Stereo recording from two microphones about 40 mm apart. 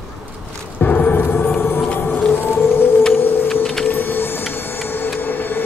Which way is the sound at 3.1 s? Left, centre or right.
Left.